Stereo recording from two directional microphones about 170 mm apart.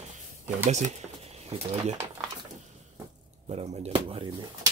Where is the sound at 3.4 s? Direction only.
40° right (ahead or behind).